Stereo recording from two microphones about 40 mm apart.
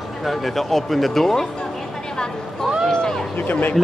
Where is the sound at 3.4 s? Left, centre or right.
Left.